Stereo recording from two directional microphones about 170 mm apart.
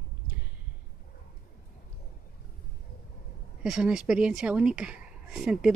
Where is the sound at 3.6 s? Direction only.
5° right (ahead or behind).